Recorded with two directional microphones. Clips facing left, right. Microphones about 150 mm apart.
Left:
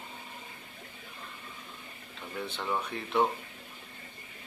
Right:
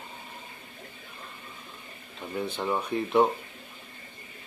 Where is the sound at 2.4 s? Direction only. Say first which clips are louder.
Right 4 dB; 15° right (ahead or behind).